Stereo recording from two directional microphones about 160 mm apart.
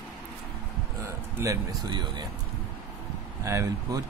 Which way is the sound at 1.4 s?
25° right (ahead or behind).